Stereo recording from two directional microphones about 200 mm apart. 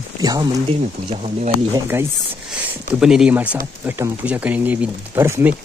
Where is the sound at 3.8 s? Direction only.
10° right (ahead or behind).